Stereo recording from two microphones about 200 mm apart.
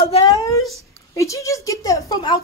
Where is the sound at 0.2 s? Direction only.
20° left (ahead or behind).